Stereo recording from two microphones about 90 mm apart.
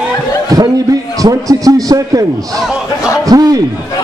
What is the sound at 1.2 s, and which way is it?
A man's voice, 40° right (ahead or behind).